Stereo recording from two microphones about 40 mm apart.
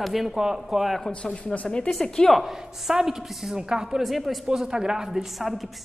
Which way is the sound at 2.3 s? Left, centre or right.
Centre.